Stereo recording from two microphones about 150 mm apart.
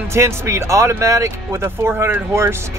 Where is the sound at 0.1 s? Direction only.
15° right (ahead or behind).